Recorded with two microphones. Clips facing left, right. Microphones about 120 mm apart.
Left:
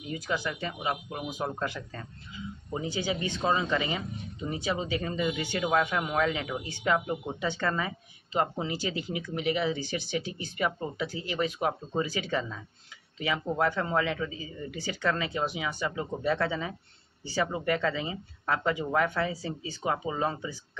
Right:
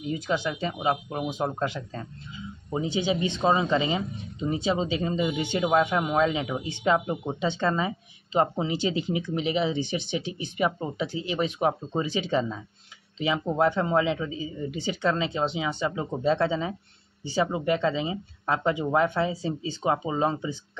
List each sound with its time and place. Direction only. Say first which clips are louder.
0.1 s speech: right 4 dB; 20° right (ahead or behind)